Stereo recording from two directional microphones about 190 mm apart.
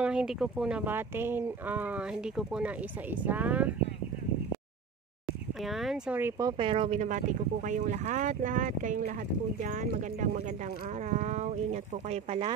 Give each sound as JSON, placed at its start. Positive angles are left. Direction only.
{"t": 0.0, "sound": "speech", "side_deg": -5}
{"t": 5.6, "sound": "speech", "side_deg": 0}
{"t": 6.5, "sound": "speech", "side_deg": -30}